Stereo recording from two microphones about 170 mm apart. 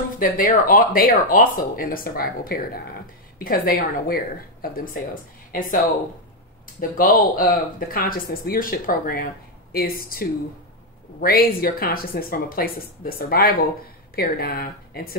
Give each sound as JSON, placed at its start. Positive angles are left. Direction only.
{"t": 0.2, "sound": "speech", "side_deg": 55}